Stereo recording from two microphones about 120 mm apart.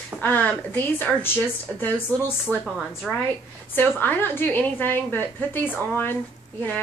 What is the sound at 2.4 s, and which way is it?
Speech, 5° right (ahead or behind).